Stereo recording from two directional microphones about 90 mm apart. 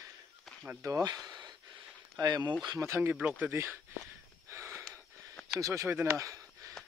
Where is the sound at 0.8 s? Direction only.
40° right (ahead or behind).